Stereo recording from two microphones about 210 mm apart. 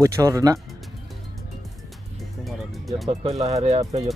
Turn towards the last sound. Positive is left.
turn(degrees=-30)  # may be behind; listen again after turning